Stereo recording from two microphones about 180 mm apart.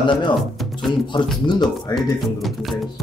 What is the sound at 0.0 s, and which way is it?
Speech, 25° left (ahead or behind).